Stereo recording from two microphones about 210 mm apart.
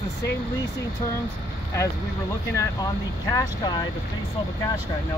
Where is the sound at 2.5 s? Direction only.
15° left (ahead or behind).